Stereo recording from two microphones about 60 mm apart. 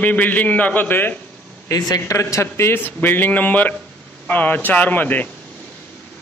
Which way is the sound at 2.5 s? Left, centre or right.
Left.